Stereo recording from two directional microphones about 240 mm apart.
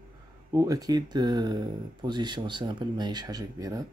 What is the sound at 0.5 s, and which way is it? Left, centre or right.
Speech, centre.